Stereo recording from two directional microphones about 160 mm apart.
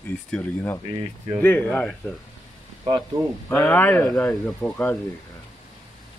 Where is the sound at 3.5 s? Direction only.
10° left (ahead or behind).